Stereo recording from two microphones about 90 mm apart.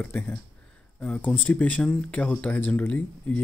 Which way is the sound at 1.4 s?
15° left (ahead or behind).